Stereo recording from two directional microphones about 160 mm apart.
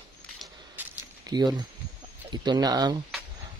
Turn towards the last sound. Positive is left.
turn(degrees=-25)  # may be behind; listen again after turning